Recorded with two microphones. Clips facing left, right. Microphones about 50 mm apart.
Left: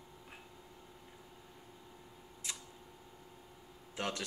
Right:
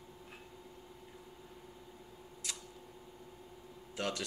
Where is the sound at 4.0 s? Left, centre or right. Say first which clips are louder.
Right 1 dB; left.